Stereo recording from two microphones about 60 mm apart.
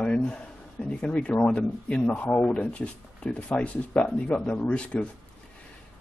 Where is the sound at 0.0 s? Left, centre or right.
Centre.